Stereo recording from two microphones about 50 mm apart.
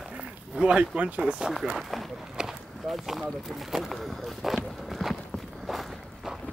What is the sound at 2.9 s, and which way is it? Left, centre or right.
Speech, centre.